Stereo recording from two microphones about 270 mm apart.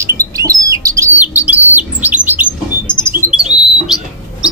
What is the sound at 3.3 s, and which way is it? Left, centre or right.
Bird, centre.